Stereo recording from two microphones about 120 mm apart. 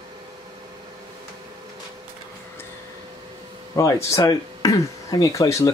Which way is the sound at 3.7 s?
25° left (ahead or behind).